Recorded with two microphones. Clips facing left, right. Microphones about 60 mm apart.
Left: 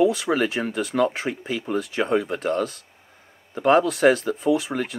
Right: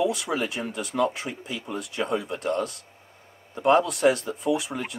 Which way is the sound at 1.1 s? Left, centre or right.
Left.